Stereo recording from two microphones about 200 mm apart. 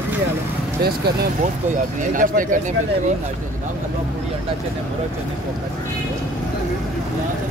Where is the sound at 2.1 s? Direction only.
40° right (ahead or behind).